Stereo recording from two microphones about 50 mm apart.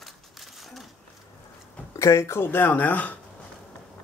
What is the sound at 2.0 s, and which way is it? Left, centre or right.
Speech, left.